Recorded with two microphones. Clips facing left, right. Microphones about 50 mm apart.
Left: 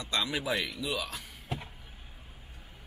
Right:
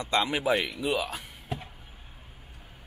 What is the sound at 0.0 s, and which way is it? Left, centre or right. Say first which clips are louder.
Speech: right 6 dB; right.